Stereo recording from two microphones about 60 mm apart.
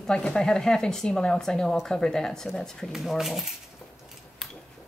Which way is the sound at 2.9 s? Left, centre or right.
Centre.